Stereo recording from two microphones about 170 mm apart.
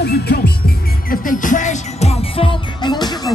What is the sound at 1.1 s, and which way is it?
Music, 50° left (ahead or behind).